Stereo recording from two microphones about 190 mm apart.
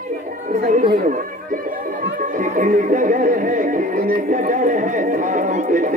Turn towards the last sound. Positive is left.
turn(degrees=-40)  # may be behind; listen again after turning